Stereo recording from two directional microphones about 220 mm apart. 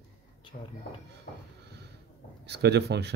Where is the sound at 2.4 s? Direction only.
50° right (ahead or behind).